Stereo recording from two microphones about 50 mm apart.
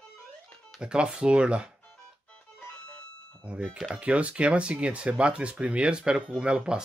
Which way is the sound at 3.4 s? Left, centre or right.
Right.